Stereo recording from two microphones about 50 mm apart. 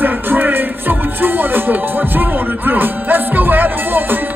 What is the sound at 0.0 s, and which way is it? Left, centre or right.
Music, right.